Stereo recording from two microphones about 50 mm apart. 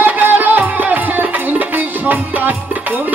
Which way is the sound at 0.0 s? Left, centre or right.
Right.